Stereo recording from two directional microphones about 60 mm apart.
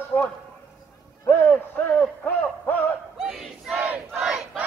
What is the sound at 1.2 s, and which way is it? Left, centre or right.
A man's voice, left.